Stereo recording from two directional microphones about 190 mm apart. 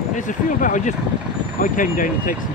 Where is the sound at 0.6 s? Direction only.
45° left (ahead or behind).